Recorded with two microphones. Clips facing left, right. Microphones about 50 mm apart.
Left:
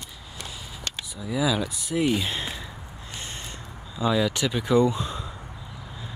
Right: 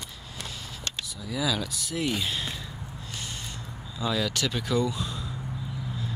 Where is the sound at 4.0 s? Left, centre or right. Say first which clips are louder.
Left 5 dB; centre.